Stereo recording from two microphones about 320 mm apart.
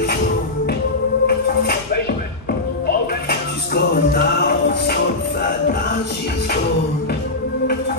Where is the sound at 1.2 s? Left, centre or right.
Left.